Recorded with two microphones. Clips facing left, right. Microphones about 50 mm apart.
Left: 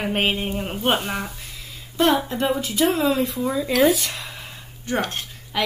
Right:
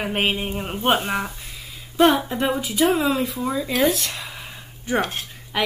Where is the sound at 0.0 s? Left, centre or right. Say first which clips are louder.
Even; centre.